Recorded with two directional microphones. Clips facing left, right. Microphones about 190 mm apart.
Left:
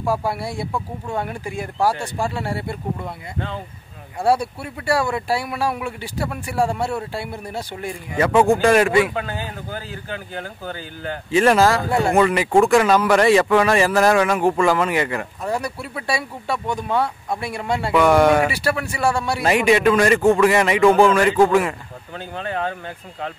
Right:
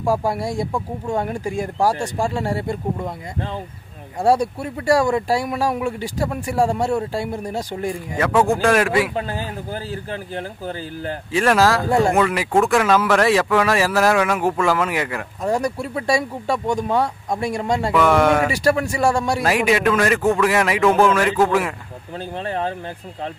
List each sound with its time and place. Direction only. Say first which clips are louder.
0.1 s speech: right 3 dB; 40° right (ahead or behind)
4.2 s speech: right 2 dB; 40° right (ahead or behind)
8.6 s speech: left 2 dB; centre (ahead or behind)
9.1 s speech: right 2 dB; 35° right (ahead or behind)
11.3 s speech: left 1 dB; centre (ahead or behind)
15.4 s speech: right 7 dB; 40° right (ahead or behind)
17.9 s speech: left 2 dB; centre (ahead or behind)
18.5 s speech: right 4 dB; 40° right (ahead or behind)
19.4 s speech: left 4 dB; centre (ahead or behind)
22.4 s speech: even; 30° right (ahead or behind)